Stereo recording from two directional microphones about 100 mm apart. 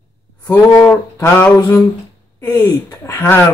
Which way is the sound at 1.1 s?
30° left (ahead or behind).